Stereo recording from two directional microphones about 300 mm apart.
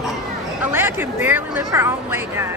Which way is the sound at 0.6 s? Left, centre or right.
Centre.